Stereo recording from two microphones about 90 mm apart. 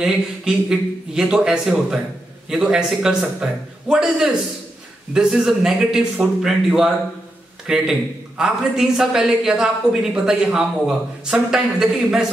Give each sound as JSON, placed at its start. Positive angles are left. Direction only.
{"t": 0.0, "sound": "speech", "side_deg": -5}